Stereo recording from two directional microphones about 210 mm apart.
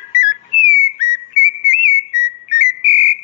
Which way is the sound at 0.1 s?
35° left (ahead or behind).